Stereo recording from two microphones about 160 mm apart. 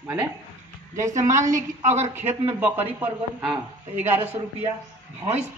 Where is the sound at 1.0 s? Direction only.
20° right (ahead or behind).